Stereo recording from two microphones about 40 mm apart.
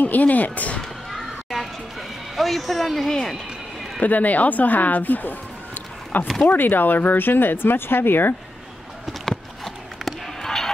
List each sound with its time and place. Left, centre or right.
0.0 s speech: left
1.1 s a sound: centre
2.3 s a man's voice: centre
4.0 s speech: left
10.4 s basketball bounce: centre